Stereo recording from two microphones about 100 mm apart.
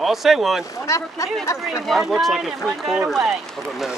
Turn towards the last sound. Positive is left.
turn(degrees=-5)  # may be behind; listen again after turning